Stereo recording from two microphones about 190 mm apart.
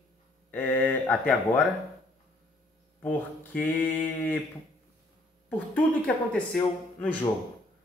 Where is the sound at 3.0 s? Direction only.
10° left (ahead or behind).